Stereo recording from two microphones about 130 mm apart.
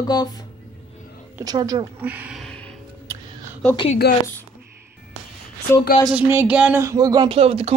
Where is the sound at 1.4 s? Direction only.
30° right (ahead or behind).